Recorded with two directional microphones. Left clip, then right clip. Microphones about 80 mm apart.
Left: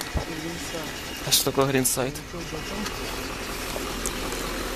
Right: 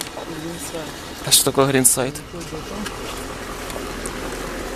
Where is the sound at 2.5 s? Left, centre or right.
Left.